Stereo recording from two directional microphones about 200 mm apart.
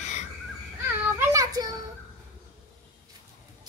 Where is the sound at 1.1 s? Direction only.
15° right (ahead or behind).